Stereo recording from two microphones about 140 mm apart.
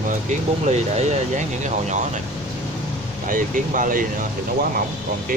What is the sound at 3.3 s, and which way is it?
Speech, 75° right (ahead or behind).